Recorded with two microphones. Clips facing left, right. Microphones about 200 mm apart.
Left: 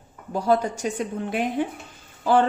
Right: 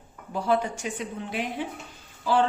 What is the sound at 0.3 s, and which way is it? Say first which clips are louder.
A woman's voice: left 4 dB; 40° left (ahead or behind).